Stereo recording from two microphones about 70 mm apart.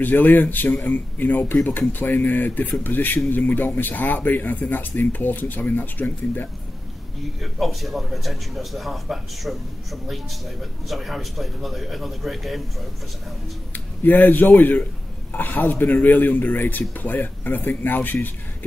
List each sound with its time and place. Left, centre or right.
0.0 s speech: left
7.6 s speech: centre
14.0 s speech: left